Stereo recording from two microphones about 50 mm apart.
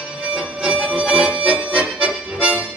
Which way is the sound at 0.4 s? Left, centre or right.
Centre.